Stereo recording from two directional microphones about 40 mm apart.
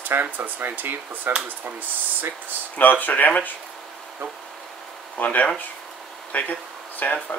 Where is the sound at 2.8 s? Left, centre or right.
Left.